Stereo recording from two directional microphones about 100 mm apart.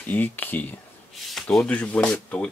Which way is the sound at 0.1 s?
20° left (ahead or behind).